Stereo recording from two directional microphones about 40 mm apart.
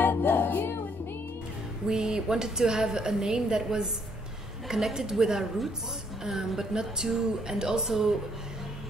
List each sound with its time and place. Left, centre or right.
0.1 s music: left
1.9 s a woman's voice: centre